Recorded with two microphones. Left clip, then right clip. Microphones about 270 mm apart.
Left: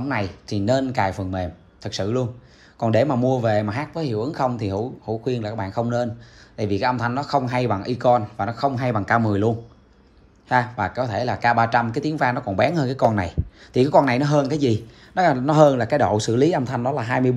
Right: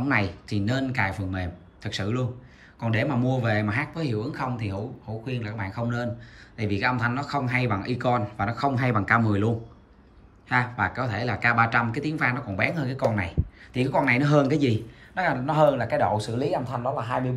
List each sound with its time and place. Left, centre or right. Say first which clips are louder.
0.0 s speech: right 1 dB; centre
15.1 s speech: left 7 dB; left